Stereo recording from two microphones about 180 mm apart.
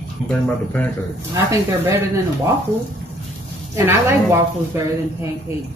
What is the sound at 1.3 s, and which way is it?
Speech, 15° right (ahead or behind).